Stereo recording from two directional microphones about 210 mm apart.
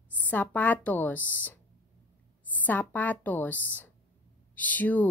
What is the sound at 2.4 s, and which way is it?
Speech, 10° left (ahead or behind).